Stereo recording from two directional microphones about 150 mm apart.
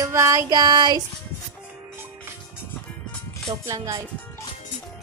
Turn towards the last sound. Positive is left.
turn(degrees=-20)  # may be behind; listen again after turning